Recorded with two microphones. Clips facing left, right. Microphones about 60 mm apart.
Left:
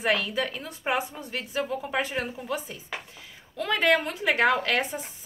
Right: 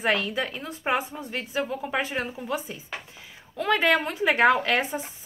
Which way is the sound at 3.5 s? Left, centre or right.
Centre.